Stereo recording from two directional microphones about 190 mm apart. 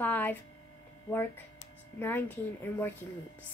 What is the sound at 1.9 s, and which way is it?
Speech, 10° left (ahead or behind).